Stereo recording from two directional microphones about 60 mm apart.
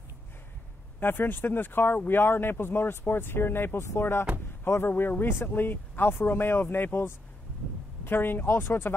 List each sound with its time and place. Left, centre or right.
0.9 s speech: left